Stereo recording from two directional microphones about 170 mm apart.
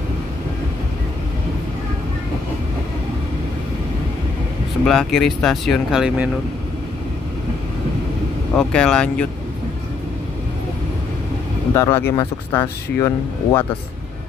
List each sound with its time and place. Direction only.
4.8 s speech: 5° left (ahead or behind)
8.5 s speech: 5° left (ahead or behind)
11.7 s speech: 20° left (ahead or behind)